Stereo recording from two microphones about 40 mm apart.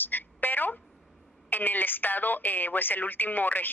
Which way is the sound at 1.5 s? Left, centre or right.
Left.